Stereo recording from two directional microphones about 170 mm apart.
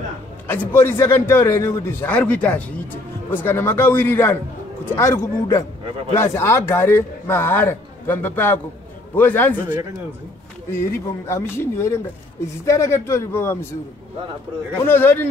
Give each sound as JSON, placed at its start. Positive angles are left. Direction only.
{"t": 0.5, "sound": "a man's voice", "side_deg": 15}
{"t": 10.8, "sound": "a man's voice", "side_deg": 15}
{"t": 14.9, "sound": "a man's voice", "side_deg": 10}